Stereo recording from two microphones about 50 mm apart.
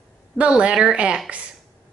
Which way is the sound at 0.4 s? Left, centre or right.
Right.